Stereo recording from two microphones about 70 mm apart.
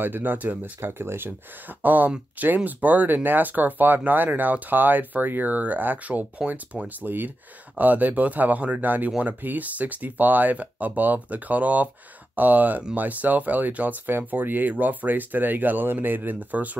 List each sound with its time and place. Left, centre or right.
0.0 s speech: right